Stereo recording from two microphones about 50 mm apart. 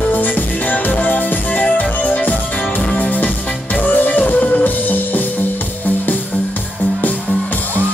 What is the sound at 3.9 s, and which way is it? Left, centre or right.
Music, left.